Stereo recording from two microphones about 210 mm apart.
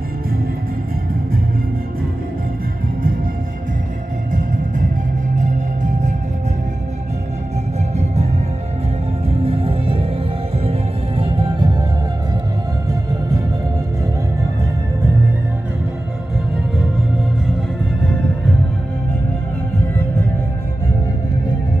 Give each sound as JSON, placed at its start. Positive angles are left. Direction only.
{"t": 4.3, "sound": "music", "side_deg": -40}
{"t": 7.9, "sound": "music", "side_deg": -30}
{"t": 9.3, "sound": "music", "side_deg": -25}